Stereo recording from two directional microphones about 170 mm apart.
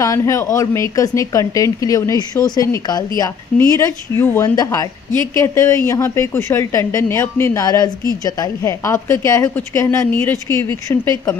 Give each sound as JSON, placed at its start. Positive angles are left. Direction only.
{"t": 0.0, "sound": "a woman's voice", "side_deg": 20}